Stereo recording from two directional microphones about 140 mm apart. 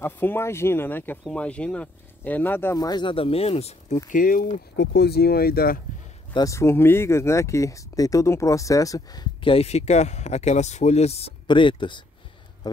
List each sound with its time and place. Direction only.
0.0 s speech: 15° left (ahead or behind); by 4.0 s 50° left (ahead or behind)
4.1 s speech: 75° left (ahead or behind)
5.2 s speech: 90° left
6.3 s speech: 25° left (ahead or behind); by 11.3 s 50° left (ahead or behind)
11.4 s speech: 35° left (ahead or behind)